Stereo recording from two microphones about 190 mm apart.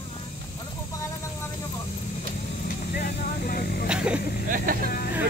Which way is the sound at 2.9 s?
50° left (ahead or behind).